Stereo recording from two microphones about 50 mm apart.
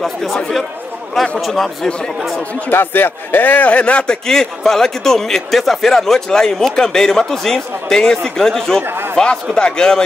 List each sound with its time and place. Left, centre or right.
0.0 s speech: centre
1.4 s speech: centre
2.7 s a man's voice: left
4.3 s a man's voice: centre
8.8 s speech: right
9.2 s a man's voice: centre